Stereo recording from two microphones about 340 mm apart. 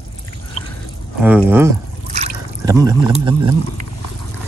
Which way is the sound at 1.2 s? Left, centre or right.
Centre.